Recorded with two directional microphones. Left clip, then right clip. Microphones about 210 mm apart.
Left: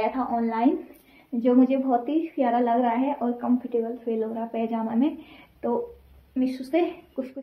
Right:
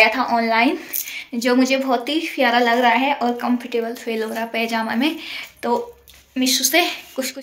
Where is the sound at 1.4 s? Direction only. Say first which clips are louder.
Right 4 dB; centre (ahead or behind).